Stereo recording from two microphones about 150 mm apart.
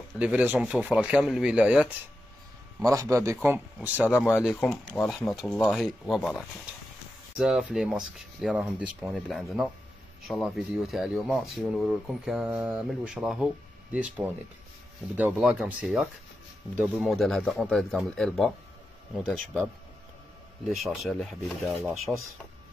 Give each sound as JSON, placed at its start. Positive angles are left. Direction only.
{"t": 0.2, "sound": "speech", "side_deg": -10}
{"t": 2.8, "sound": "a man's voice", "side_deg": -20}
{"t": 20.6, "sound": "speech", "side_deg": 0}